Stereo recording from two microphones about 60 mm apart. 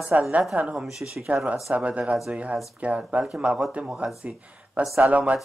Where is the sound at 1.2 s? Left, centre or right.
Centre.